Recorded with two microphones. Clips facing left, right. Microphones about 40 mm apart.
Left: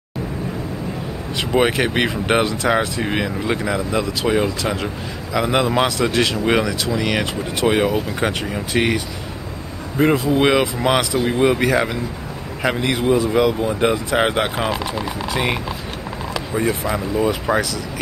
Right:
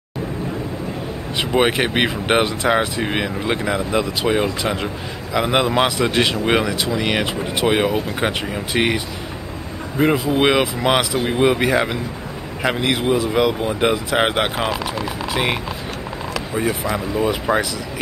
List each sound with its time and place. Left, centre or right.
1.3 s speech: centre
9.9 s speech: centre
13.6 s speech: right